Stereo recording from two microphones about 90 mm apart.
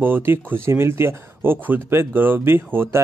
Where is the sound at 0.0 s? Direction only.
25° right (ahead or behind).